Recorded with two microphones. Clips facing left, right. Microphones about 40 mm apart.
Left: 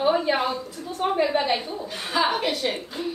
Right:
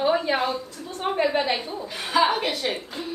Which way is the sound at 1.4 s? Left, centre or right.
Centre.